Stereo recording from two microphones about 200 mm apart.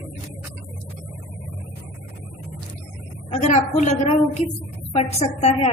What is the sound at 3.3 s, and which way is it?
Speech, 35° left (ahead or behind).